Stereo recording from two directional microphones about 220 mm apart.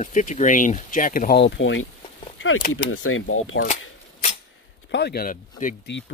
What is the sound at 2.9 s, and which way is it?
Speech, 70° left (ahead or behind).